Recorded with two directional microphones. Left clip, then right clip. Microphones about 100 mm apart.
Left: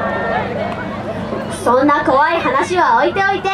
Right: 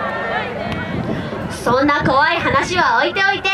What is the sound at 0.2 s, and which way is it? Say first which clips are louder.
Run: left 3 dB; 20° right (ahead or behind).